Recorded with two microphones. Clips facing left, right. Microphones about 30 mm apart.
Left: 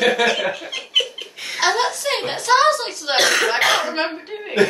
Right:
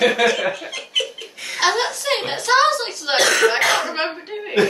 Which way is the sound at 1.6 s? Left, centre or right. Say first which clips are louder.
Even; centre.